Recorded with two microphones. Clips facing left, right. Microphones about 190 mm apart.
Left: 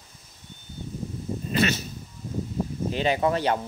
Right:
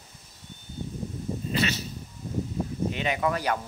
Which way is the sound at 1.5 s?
50° left (ahead or behind).